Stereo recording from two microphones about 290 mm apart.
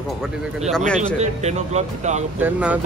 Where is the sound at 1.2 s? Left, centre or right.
Right.